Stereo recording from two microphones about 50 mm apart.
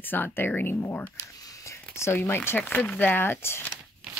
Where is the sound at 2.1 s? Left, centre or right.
Left.